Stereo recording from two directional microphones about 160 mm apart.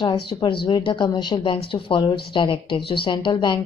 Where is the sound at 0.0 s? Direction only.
30° left (ahead or behind).